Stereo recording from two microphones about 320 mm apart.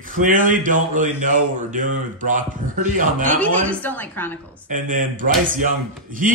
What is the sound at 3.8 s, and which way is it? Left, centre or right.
Speech, centre.